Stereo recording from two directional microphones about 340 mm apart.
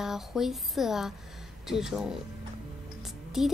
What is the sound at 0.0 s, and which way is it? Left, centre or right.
Speech, centre.